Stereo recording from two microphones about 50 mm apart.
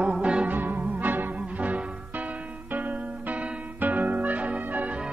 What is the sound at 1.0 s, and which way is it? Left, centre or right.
Music, right.